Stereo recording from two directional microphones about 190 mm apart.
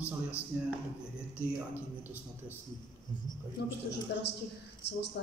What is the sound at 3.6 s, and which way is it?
Speech, 60° left (ahead or behind).